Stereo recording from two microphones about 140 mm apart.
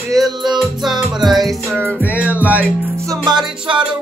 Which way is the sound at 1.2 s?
Centre (ahead or behind).